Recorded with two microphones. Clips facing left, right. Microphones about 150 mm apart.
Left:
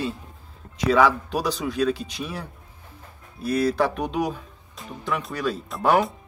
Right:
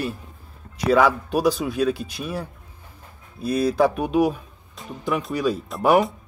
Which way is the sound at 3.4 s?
10° right (ahead or behind).